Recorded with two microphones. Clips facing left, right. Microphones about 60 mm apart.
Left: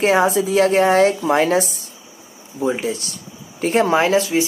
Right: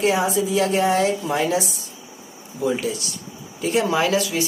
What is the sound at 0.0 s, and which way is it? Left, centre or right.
A woman's voice, left.